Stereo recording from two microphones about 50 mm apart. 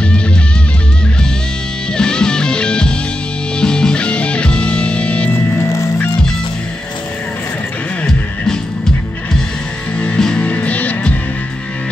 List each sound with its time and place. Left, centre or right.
2.0 s music: centre
5.3 s music: left
10.1 s music: centre
10.4 s music: left